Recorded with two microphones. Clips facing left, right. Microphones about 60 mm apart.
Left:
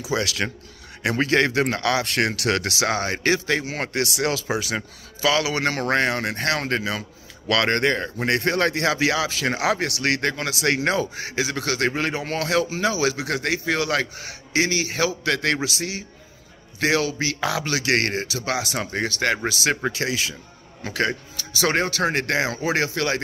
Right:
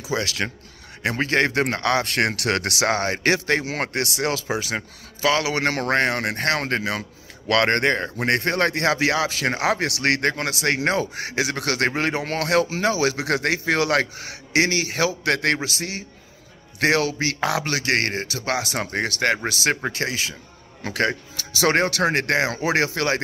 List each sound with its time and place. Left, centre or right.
0.1 s speech: right
4.6 s speech: right
5.4 s speech: right
9.8 s a man's voice: right
10.6 s speech: right
11.1 s a man's voice: right
11.5 s a man's voice: right
17.8 s speech: right
20.8 s a man's voice: right